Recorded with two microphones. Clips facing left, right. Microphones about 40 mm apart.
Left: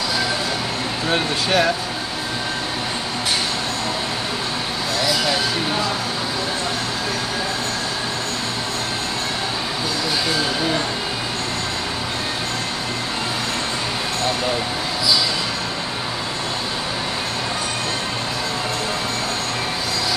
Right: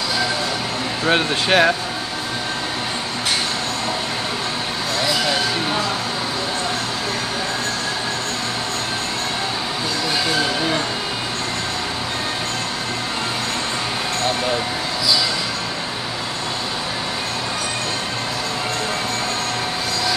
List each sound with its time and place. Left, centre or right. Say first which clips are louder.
1.0 s speech: right 3 dB; right